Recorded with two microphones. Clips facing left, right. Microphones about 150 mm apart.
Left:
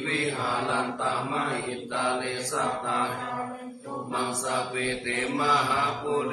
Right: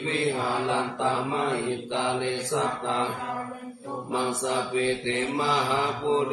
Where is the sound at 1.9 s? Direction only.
20° right (ahead or behind).